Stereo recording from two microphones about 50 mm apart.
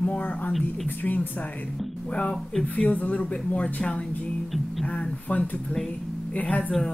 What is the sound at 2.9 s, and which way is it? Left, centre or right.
A woman's voice, left.